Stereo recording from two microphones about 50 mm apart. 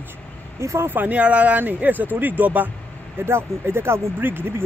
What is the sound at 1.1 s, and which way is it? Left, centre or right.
Speech, right.